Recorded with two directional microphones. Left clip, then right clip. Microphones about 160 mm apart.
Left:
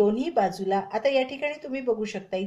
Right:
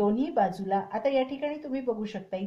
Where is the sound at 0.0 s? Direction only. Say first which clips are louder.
Left 3 dB; 40° left (ahead or behind).